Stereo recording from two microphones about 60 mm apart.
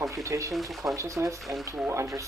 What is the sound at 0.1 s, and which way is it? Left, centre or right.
Speech, right.